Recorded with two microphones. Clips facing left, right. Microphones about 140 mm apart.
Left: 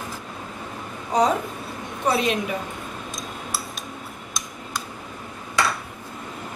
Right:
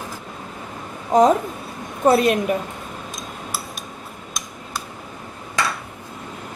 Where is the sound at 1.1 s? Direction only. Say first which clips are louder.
Right 6 dB; 50° right (ahead or behind).